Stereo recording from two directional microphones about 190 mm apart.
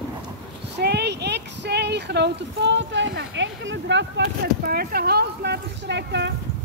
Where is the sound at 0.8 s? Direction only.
60° right (ahead or behind).